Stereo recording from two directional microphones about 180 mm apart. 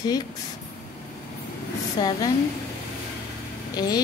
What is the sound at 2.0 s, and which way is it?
Speech, 25° left (ahead or behind).